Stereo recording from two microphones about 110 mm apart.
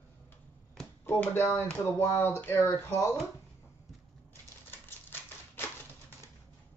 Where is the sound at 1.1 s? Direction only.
20° left (ahead or behind).